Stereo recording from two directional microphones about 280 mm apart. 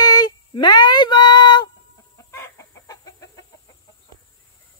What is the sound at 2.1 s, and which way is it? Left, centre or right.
Chicken, centre.